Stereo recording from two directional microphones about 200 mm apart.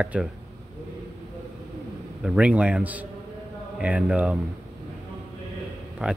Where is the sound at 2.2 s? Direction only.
5° right (ahead or behind).